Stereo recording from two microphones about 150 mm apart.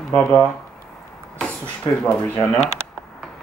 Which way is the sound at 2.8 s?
15° right (ahead or behind).